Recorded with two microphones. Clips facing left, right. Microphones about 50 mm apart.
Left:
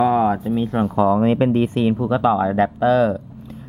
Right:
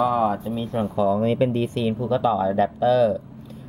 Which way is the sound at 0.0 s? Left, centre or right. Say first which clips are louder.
Left 4 dB; left.